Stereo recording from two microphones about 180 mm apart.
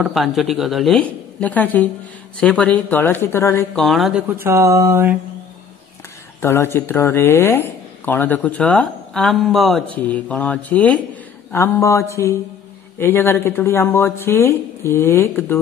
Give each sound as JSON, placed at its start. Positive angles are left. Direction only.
{"t": 0.1, "sound": "a woman's voice", "side_deg": 0}
{"t": 3.8, "sound": "speech", "side_deg": 0}
{"t": 6.4, "sound": "speech", "side_deg": 15}